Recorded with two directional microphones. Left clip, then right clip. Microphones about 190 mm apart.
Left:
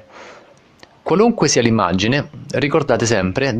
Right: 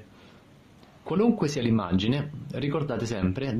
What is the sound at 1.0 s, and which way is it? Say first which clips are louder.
Speech: left 11 dB; 35° left (ahead or behind).